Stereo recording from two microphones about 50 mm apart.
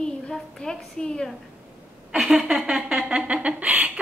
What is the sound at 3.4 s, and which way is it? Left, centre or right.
Speech, right.